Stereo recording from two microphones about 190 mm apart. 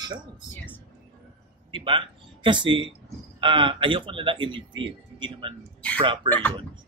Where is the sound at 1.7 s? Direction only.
25° right (ahead or behind).